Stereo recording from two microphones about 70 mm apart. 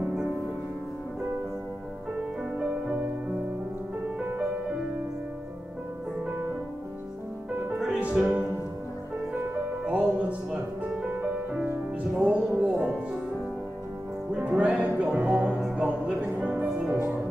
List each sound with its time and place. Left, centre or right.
2.6 s music: right
8.0 s music: centre
9.8 s music: centre
14.6 s music: centre